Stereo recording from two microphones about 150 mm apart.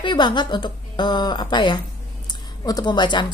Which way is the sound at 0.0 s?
30° left (ahead or behind).